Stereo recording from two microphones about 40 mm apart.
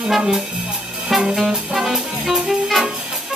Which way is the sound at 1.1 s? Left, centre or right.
Centre.